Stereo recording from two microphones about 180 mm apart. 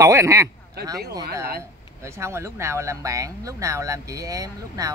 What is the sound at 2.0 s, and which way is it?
Speech, 15° right (ahead or behind).